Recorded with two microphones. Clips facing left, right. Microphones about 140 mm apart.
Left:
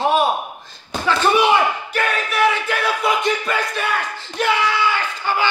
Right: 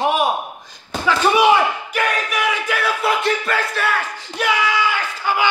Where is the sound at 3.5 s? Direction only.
Centre (ahead or behind).